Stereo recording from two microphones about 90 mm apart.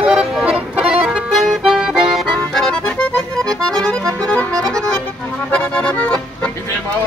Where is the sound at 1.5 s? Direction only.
5° right (ahead or behind).